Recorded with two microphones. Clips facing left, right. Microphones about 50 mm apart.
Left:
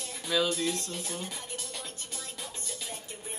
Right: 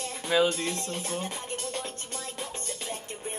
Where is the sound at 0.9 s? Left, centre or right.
Right.